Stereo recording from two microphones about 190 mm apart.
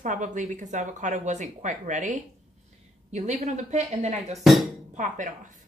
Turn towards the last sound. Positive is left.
turn(degrees=-40)  # may be behind; listen again after turning